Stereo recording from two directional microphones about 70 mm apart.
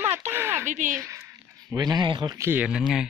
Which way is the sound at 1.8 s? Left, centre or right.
Right.